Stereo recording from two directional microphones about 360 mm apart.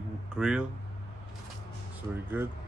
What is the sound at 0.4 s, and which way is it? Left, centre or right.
Speech, centre.